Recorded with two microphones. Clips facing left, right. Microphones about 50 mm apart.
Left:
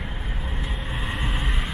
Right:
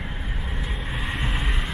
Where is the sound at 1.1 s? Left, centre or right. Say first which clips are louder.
Right 1 dB; centre.